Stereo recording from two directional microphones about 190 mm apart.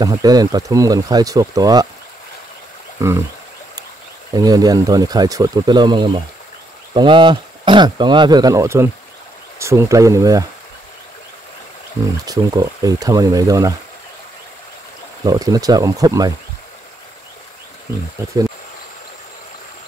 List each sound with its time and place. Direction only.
0.0 s speech: 20° right (ahead or behind)
3.0 s speech: 15° right (ahead or behind)
4.3 s speech: 20° right (ahead or behind)
12.3 s speech: 20° right (ahead or behind)
15.2 s speech: 20° right (ahead or behind)